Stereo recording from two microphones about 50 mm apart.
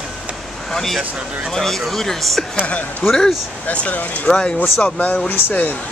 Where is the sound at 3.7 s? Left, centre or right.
Left.